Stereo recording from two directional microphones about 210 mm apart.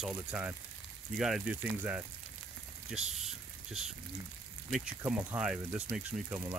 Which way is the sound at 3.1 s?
Centre (ahead or behind).